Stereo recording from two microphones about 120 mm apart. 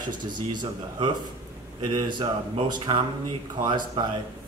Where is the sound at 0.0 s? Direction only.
40° right (ahead or behind).